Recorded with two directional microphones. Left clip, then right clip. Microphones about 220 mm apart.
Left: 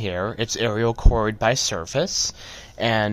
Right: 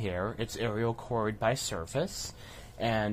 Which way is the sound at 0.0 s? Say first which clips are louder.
Left 8 dB; 20° left (ahead or behind).